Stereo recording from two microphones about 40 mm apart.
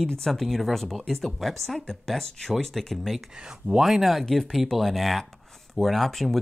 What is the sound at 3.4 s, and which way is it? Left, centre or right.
Speech, centre.